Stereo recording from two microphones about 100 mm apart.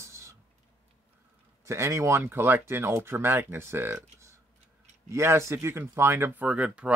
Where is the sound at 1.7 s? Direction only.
30° right (ahead or behind).